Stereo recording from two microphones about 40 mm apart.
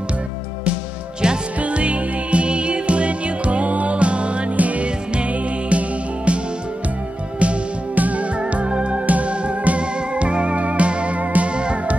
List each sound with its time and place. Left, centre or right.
1.6 s music: right